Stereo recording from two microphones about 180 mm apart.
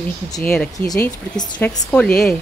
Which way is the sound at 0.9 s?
15° left (ahead or behind).